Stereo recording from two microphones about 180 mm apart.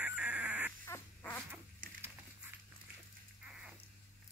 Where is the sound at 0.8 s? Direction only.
10° left (ahead or behind).